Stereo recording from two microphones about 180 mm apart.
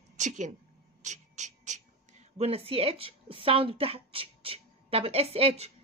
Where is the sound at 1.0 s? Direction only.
40° right (ahead or behind).